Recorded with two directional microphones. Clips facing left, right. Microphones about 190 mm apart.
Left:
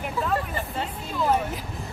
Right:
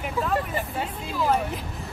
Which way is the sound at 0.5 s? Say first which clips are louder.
Right 1 dB; 10° right (ahead or behind).